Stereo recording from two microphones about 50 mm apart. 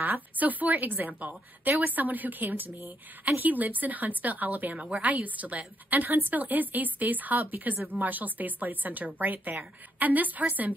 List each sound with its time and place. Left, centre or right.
0.0 s a woman's voice: right
4.7 s a woman's voice: centre
5.0 s a woman's voice: right